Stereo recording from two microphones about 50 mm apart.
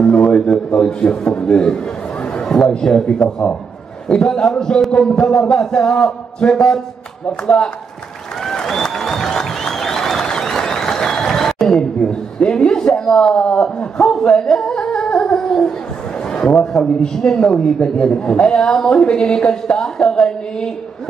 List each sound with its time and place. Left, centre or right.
0.1 s a man's voice: left; by 2.7 s centre
2.7 s a man's voice: centre
8.5 s music: centre
10.2 s a sound: centre
12.8 s a man's voice: centre